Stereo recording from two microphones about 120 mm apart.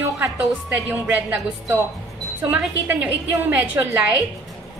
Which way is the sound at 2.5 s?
10° right (ahead or behind).